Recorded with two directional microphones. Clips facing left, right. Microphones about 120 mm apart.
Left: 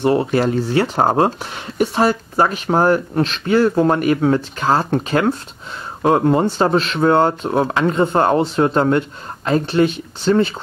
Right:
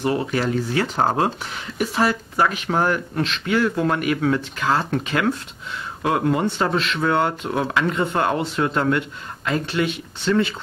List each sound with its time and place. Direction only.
0.0 s speech: 30° left (ahead or behind)